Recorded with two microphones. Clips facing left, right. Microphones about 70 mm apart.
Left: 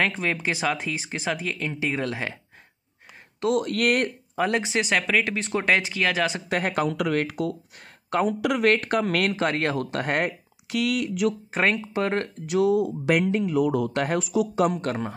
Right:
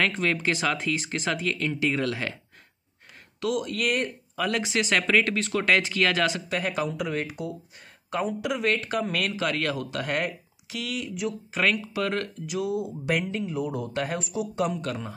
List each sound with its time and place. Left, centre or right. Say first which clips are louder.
0.0 s speech: even; centre
3.5 s speech: left 5 dB; left
4.4 s speech: left 3 dB; left
5.0 s speech: right 1 dB; centre
5.4 s speech: even; left
6.5 s speech: left 3 dB; left
6.9 s speech: left 5 dB; left
11.5 s speech: left 2 dB; left
12.4 s speech: left 10 dB; left
13.4 s speech: left 7 dB; left